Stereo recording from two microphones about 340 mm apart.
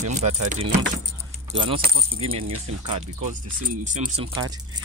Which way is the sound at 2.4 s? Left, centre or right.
Right.